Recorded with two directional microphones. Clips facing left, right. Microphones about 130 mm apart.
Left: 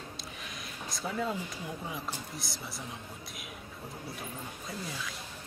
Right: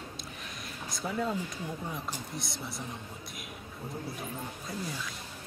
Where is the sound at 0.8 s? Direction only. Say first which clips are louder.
Right 1 dB; centre (ahead or behind).